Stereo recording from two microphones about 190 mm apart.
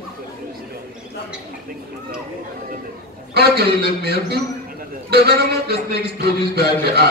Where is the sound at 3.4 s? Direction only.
55° right (ahead or behind).